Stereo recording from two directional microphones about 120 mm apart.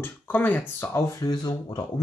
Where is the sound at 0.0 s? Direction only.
15° left (ahead or behind).